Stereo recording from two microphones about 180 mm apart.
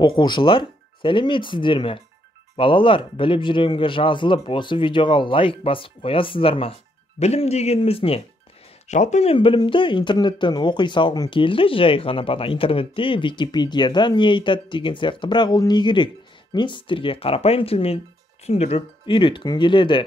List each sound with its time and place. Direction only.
0.0 s speech: 25° left (ahead or behind)